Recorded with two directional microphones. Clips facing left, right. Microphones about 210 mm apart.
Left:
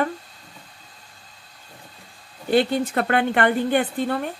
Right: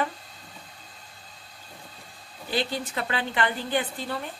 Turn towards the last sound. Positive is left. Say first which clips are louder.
# left 8 dB
turn(degrees=55)  # may be behind; listen again after turning